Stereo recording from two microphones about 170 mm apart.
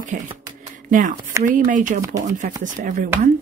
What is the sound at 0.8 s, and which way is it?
Speech, 50° right (ahead or behind).